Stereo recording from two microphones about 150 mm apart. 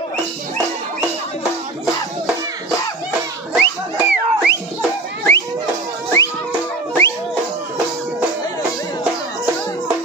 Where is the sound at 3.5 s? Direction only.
5° right (ahead or behind).